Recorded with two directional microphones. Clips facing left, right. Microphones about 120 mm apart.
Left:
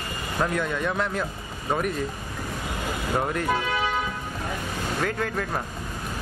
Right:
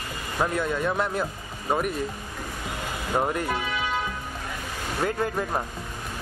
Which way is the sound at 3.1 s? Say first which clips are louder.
Right 2 dB; 10° right (ahead or behind).